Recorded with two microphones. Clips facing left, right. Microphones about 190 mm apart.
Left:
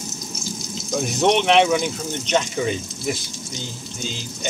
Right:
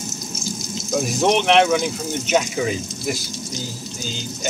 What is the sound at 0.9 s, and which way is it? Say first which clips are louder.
Speech: even; centre (ahead or behind).